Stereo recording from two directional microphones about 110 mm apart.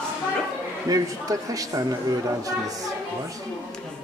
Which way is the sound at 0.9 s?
30° right (ahead or behind).